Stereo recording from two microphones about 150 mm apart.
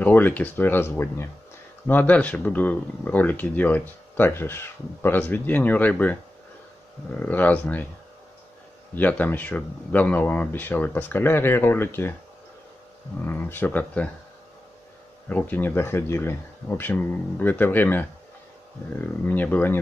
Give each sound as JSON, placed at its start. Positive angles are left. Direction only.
{"t": 0.0, "sound": "speech", "side_deg": 10}
{"t": 7.2, "sound": "speech", "side_deg": 10}
{"t": 8.9, "sound": "speech", "side_deg": 10}
{"t": 13.2, "sound": "speech", "side_deg": 15}
{"t": 15.2, "sound": "speech", "side_deg": 10}